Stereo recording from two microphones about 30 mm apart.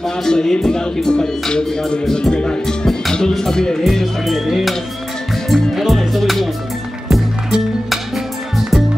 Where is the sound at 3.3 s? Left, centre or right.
Centre.